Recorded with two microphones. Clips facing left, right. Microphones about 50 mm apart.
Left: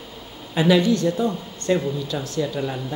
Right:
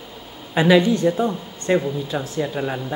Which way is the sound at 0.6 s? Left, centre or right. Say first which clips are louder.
Right 2 dB; centre.